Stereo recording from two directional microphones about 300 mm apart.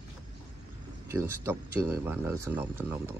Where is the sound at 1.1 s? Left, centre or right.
Centre.